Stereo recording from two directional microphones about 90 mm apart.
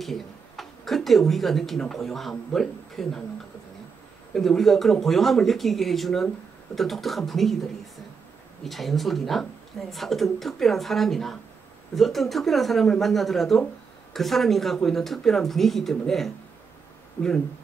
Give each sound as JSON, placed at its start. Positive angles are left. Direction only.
{"t": 0.0, "sound": "speech", "side_deg": 0}
{"t": 4.3, "sound": "speech", "side_deg": 5}
{"t": 17.2, "sound": "speech", "side_deg": 25}